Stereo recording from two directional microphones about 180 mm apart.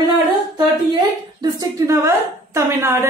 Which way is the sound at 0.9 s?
20° right (ahead or behind).